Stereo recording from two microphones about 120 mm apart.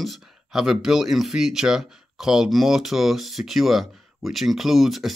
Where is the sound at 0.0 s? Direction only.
Centre (ahead or behind).